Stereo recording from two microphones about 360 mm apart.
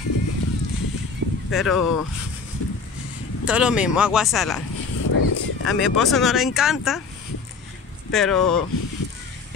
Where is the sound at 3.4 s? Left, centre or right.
Centre.